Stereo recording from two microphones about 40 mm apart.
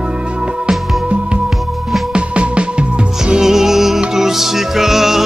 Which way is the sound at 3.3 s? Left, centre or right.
Centre.